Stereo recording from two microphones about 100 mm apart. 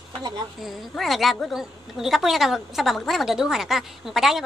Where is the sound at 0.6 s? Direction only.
Centre (ahead or behind).